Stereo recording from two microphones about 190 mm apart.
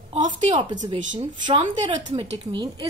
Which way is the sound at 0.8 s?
25° right (ahead or behind).